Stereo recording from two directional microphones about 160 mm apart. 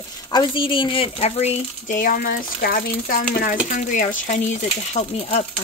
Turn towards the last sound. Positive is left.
turn(degrees=45)  # may be behind; listen again after turning